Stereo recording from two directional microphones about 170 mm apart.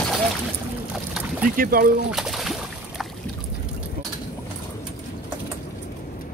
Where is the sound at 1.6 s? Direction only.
55° right (ahead or behind).